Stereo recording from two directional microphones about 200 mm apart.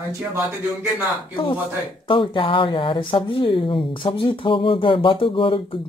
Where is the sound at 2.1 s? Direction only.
25° left (ahead or behind).